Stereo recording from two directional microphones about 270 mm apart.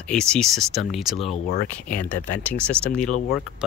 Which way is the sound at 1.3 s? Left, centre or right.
Left.